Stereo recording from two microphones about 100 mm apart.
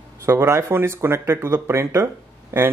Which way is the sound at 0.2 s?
25° right (ahead or behind).